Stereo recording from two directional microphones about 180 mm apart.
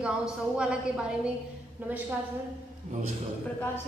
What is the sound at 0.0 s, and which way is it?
A woman's voice, 5° right (ahead or behind).